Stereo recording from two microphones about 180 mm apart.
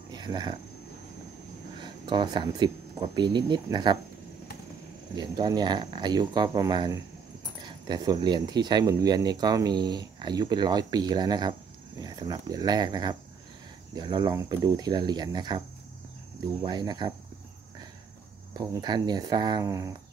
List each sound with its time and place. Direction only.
0.1 s speech: 25° right (ahead or behind)
1.8 s speech: 25° right (ahead or behind)
5.1 s speech: 25° right (ahead or behind)
16.6 s speech: 25° right (ahead or behind)
18.5 s speech: 20° right (ahead or behind)